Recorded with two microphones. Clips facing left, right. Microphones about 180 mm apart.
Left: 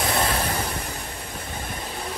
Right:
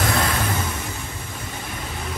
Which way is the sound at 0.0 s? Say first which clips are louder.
Right 1 dB; 25° left (ahead or behind).